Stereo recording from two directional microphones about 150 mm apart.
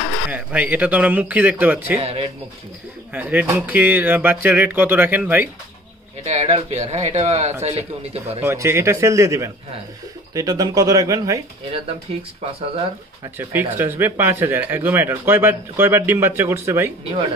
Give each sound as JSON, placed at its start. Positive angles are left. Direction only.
{"t": 0.3, "sound": "speech", "side_deg": -10}
{"t": 2.0, "sound": "speech", "side_deg": -40}
{"t": 3.1, "sound": "speech", "side_deg": -10}
{"t": 6.2, "sound": "speech", "side_deg": -45}
{"t": 8.4, "sound": "a man's voice", "side_deg": -15}
{"t": 11.7, "sound": "speech", "side_deg": -40}
{"t": 13.4, "sound": "speech", "side_deg": -15}